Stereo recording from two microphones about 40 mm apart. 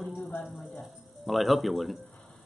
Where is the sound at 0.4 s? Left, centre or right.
Centre.